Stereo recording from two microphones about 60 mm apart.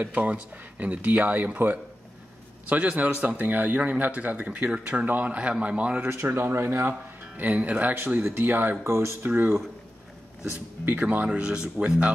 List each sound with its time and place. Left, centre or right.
0.0 s speech: right
6.0 s speech: right
6.9 s speech: right
8.8 s speech: right
9.3 s speech: right
10.9 s speech: right
11.2 s speech: centre